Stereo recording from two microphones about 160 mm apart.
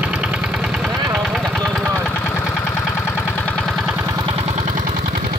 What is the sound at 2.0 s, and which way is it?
Engine, 10° left (ahead or behind).